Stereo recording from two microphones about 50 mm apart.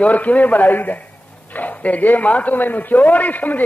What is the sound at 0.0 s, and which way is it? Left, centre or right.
A man's voice, left.